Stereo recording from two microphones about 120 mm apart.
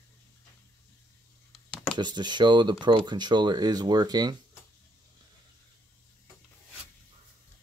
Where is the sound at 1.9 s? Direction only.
40° right (ahead or behind).